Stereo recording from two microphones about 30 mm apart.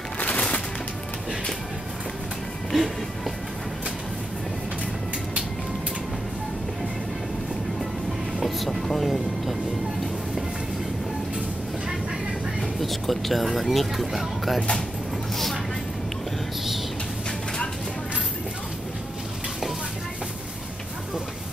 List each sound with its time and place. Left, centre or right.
0.2 s music: left
2.7 s music: centre
8.4 s vehicle: centre
8.6 s vehicle: centre
9.0 s vehicle: centre
12.8 s speech: centre
15.3 s vehicle: centre